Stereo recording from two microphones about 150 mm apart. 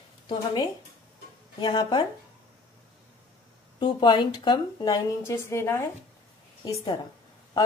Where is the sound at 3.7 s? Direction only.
30° left (ahead or behind).